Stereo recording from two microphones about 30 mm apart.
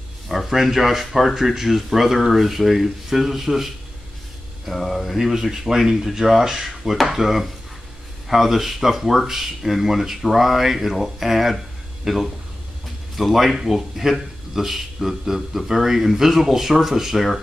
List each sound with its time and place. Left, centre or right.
0.3 s a man's voice: centre
5.3 s a man's voice: centre
7.2 s a man's voice: centre
13.3 s a man's voice: centre